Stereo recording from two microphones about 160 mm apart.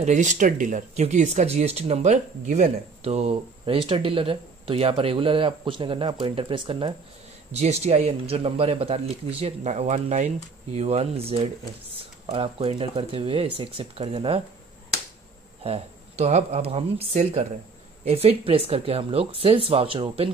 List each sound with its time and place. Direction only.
0.0 s speech: 50° right (ahead or behind)
15.6 s speech: 40° right (ahead or behind)